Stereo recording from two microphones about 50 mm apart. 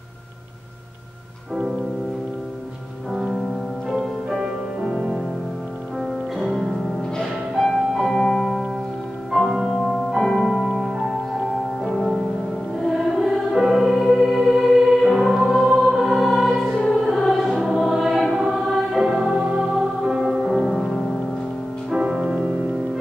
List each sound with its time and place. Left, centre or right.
3.1 s music: centre
6.3 s music: centre
7.9 s music: centre
9.3 s music: centre
17.0 s choir: centre
18.9 s music: centre
21.9 s music: centre